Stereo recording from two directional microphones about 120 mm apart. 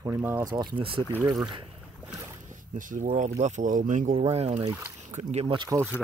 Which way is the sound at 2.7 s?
90° right.